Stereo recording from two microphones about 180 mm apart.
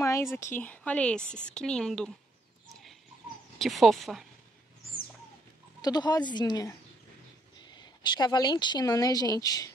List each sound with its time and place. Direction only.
0.0 s a woman's voice: 15° left (ahead or behind)
2.7 s a sound: centre (ahead or behind)
3.5 s speech: centre (ahead or behind)
5.8 s speech: 25° left (ahead or behind)
7.7 s speech: 25° left (ahead or behind)